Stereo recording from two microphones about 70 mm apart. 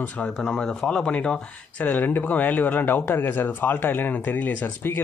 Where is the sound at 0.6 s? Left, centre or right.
Centre.